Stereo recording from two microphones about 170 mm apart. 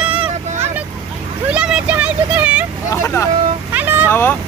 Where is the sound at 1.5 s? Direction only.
5° right (ahead or behind).